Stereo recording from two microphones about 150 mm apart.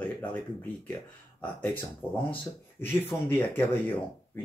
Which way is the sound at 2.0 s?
10° left (ahead or behind).